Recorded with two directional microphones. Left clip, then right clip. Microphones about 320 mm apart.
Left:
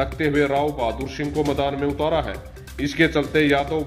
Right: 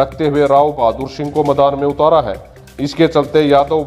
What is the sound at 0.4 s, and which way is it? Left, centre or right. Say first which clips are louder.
A man's voice: right 11 dB; centre.